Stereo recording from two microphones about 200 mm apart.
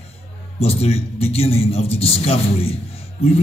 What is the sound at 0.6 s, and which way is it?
A man's voice, 30° left (ahead or behind).